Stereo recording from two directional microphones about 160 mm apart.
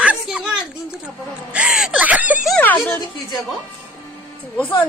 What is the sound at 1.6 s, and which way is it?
Speech, 5° right (ahead or behind).